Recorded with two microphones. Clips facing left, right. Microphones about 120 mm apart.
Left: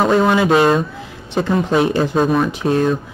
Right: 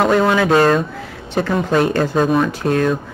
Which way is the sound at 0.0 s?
5° left (ahead or behind).